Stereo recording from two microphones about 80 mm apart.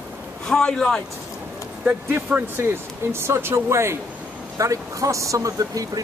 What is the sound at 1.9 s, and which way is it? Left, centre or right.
Speech, centre.